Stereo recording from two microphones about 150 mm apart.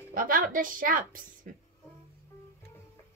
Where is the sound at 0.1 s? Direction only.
70° right (ahead or behind).